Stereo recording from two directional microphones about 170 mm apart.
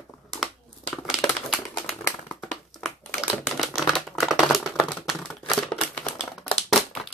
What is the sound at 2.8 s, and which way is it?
Typing, centre (ahead or behind).